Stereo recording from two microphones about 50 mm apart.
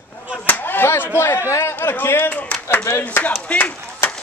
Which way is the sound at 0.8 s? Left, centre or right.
Left.